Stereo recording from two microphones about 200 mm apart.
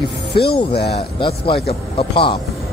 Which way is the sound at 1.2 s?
30° left (ahead or behind).